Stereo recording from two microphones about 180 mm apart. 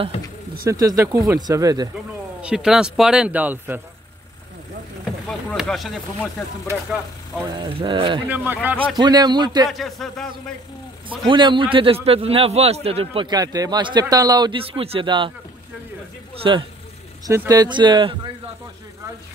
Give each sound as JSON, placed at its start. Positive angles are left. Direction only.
{"t": 0.7, "sound": "speech", "side_deg": -20}
{"t": 2.4, "sound": "speech", "side_deg": -5}
{"t": 5.0, "sound": "speech", "side_deg": 5}
{"t": 7.5, "sound": "a man's voice", "side_deg": -25}
{"t": 8.3, "sound": "speech", "side_deg": -10}
{"t": 8.9, "sound": "a man's voice", "side_deg": -25}
{"t": 9.7, "sound": "speech", "side_deg": 0}
{"t": 11.2, "sound": "a man's voice", "side_deg": -25}
{"t": 16.4, "sound": "a man's voice", "side_deg": -25}